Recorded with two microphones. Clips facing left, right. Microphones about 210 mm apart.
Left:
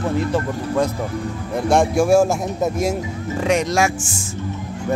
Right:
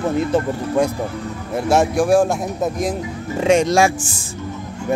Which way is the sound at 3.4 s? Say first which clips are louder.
Right 4 dB; 25° right (ahead or behind).